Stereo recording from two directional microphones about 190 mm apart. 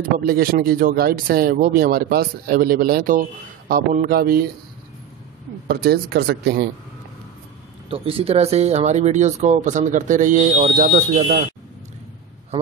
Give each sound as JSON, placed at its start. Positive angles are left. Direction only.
{"t": 0.0, "sound": "speech", "side_deg": -50}
{"t": 5.7, "sound": "speech", "side_deg": -55}
{"t": 7.9, "sound": "speech", "side_deg": -30}